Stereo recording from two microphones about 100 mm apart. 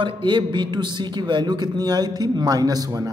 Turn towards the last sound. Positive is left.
turn(degrees=-40)  # may be behind; listen again after turning